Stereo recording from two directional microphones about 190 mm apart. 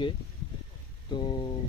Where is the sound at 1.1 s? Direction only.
25° left (ahead or behind).